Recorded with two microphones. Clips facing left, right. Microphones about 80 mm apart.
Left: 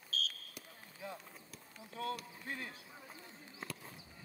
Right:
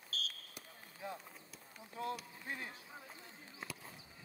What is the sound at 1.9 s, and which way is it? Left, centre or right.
Speech, centre.